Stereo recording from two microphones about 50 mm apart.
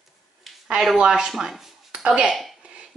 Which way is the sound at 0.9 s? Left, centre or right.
Centre.